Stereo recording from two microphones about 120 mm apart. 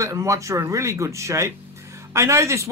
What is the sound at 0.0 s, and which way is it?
A man's voice, 25° right (ahead or behind).